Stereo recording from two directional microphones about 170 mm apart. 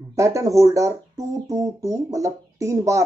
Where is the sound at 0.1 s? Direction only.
20° right (ahead or behind).